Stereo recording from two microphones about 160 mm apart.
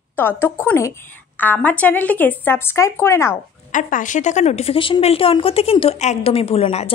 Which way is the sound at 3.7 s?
55° left (ahead or behind).